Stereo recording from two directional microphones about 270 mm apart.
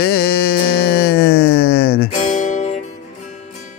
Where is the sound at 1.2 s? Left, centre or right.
Left.